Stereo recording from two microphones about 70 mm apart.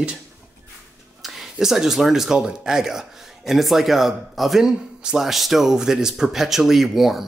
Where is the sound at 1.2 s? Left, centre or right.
Centre.